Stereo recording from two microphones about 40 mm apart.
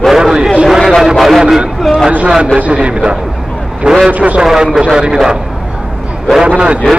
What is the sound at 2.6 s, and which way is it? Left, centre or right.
Speech, right.